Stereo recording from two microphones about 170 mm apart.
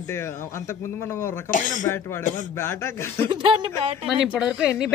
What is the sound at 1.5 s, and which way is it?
Speech, 50° left (ahead or behind).